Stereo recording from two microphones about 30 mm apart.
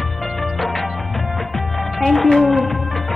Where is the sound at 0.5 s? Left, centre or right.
Centre.